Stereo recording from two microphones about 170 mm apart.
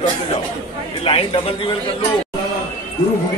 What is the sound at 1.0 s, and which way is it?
Speech, 30° left (ahead or behind).